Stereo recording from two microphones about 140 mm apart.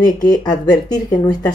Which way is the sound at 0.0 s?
30° left (ahead or behind).